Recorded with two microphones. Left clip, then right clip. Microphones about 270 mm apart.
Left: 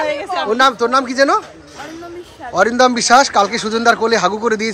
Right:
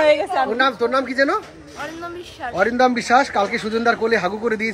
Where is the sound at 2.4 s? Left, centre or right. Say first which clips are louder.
Left 5 dB; centre.